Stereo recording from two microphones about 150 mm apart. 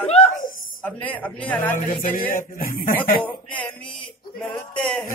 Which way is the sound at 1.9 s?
70° left (ahead or behind).